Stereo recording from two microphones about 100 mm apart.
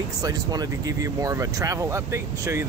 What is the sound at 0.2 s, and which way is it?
Speech, 40° right (ahead or behind).